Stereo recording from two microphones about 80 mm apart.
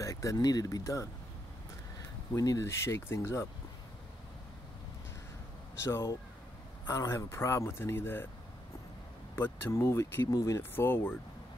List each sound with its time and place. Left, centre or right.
0.0 s speech: left
2.3 s speech: left
5.9 s speech: left
9.3 s speech: left
10.2 s speech: left
10.6 s speech: left